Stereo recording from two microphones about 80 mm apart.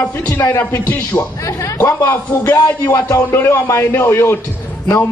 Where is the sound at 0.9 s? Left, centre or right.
Left.